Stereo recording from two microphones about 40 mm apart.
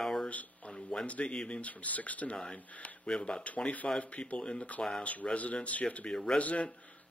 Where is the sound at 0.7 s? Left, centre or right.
Centre.